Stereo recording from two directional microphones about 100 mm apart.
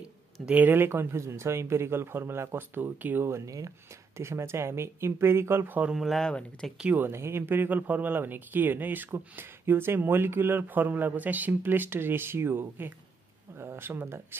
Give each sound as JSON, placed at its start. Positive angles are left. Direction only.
{"t": 0.0, "sound": "speech", "side_deg": -15}
{"t": 5.9, "sound": "speech", "side_deg": 0}
{"t": 6.8, "sound": "speech", "side_deg": -15}
{"t": 7.1, "sound": "speech", "side_deg": -25}